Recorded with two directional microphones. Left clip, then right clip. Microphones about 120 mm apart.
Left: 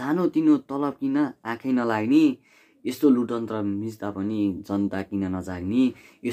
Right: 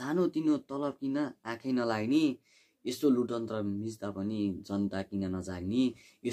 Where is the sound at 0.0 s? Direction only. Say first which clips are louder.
Left 8 dB; 5° right (ahead or behind).